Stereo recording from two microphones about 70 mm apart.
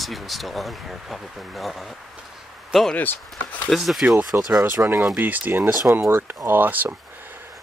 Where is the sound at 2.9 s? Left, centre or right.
Left.